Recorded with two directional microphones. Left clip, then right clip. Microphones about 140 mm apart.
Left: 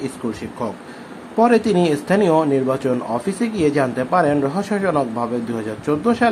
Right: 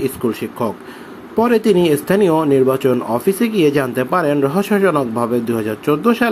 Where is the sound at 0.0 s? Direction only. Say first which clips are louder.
Right 7 dB; 25° right (ahead or behind).